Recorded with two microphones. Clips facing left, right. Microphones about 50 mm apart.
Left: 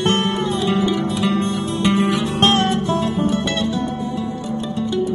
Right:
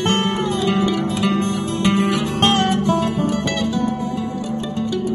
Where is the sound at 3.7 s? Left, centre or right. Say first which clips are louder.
Right 2 dB; left.